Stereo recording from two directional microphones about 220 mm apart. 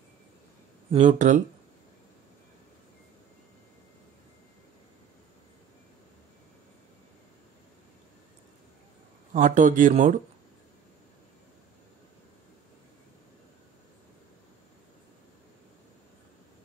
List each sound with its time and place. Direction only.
0.9 s speech: 35° right (ahead or behind)
9.3 s speech: 35° right (ahead or behind)